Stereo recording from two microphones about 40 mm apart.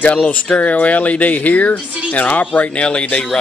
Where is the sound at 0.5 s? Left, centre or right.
Left.